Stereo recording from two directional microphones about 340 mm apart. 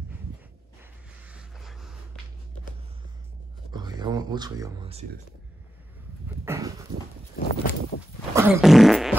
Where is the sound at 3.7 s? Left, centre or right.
Centre.